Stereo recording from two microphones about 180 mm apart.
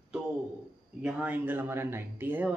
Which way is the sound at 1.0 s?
5° right (ahead or behind).